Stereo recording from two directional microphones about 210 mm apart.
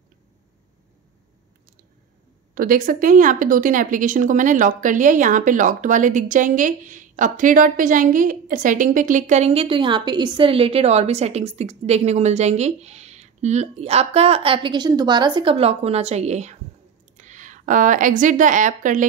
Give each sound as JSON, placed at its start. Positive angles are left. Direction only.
{"t": 2.5, "sound": "speech", "side_deg": -40}